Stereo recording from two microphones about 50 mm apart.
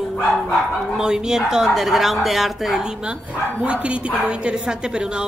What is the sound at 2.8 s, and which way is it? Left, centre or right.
A woman's voice, centre.